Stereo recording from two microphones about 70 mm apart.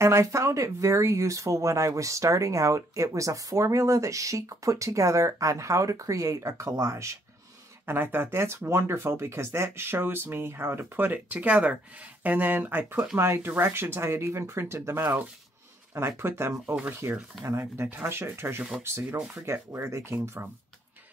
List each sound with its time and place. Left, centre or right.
0.0 s speech: right
7.8 s speech: right
11.3 s speech: centre; by 16.5 s right
17.0 s speech: right